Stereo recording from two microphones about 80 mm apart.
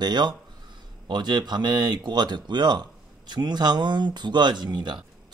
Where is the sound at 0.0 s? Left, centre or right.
Right.